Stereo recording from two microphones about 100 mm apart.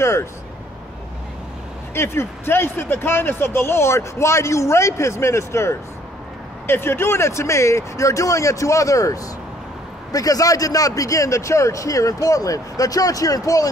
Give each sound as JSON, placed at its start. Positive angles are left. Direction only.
{"t": 0.0, "sound": "speech", "side_deg": 30}
{"t": 2.0, "sound": "a man's voice", "side_deg": 25}